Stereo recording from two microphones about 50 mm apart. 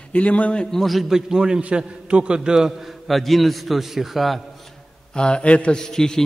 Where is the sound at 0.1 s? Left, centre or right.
Left.